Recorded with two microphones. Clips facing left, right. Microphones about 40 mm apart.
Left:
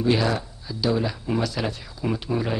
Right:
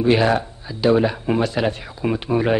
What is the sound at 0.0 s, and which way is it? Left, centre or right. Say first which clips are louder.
Speech: right 6 dB; right.